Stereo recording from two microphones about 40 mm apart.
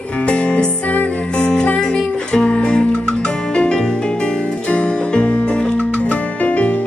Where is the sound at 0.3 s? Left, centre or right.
Left.